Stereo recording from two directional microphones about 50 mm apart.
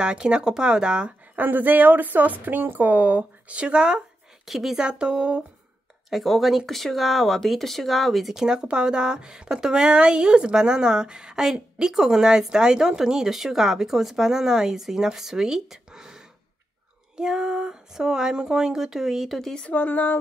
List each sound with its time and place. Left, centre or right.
0.0 s speech: centre
1.3 s speech: right; by 4.0 s centre
4.5 s speech: centre
4.7 s speech: centre
6.0 s speech: centre
17.2 s speech: centre
19.7 s speech: left